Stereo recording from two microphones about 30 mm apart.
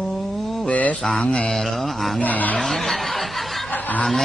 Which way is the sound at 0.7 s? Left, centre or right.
Left.